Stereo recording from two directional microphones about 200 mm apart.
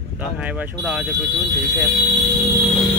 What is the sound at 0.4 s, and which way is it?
Speech, 5° right (ahead or behind).